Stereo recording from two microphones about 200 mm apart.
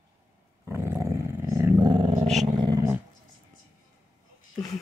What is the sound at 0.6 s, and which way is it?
Dog, 10° right (ahead or behind).